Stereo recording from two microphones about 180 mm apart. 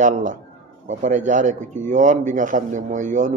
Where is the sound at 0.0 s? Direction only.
45° right (ahead or behind).